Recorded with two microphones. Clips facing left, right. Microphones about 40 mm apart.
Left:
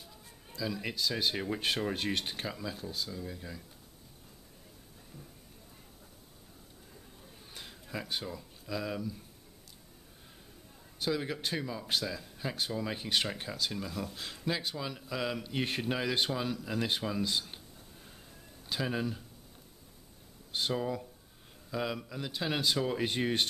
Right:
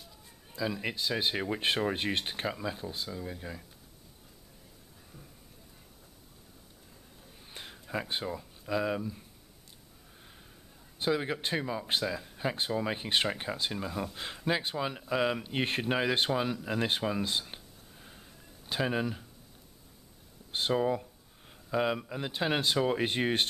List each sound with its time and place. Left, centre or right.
0.5 s speech: right
7.5 s a sound: centre
7.9 s speech: right
11.0 s speech: right
18.7 s speech: right
20.5 s speech: right